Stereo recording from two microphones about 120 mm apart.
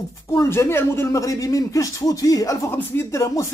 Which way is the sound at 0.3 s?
25° left (ahead or behind).